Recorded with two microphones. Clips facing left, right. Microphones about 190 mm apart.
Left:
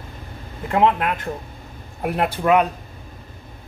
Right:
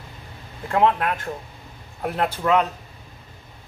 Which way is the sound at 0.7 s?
20° left (ahead or behind).